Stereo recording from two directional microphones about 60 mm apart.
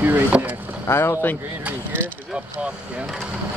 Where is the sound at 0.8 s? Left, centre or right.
Left.